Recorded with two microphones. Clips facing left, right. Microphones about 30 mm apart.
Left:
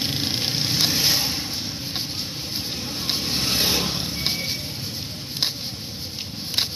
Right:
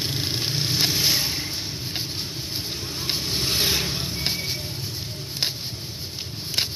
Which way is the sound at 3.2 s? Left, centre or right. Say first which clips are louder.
Left 2 dB; left.